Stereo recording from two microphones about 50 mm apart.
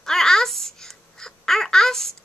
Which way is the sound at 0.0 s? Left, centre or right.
Centre.